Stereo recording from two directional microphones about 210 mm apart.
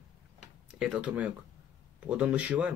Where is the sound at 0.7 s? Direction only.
5° right (ahead or behind).